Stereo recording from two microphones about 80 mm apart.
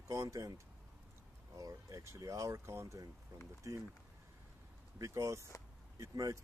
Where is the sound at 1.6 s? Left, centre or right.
Right.